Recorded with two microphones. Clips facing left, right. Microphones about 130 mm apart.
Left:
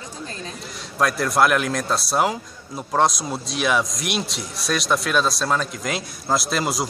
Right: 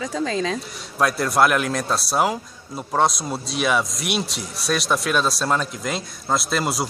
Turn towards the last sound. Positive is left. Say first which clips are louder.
# even
turn(degrees=0)  # may be behind; listen again after turning